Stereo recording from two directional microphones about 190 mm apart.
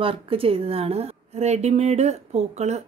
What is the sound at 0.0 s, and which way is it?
Speech, 30° right (ahead or behind).